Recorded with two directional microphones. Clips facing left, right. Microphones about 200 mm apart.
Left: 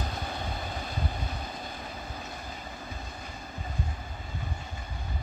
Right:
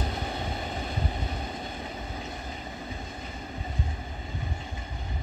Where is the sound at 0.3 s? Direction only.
20° right (ahead or behind).